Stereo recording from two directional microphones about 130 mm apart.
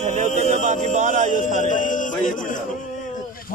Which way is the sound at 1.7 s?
85° left.